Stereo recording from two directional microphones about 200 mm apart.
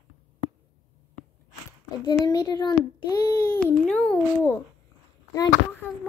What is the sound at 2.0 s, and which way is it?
A child's voice, 20° left (ahead or behind).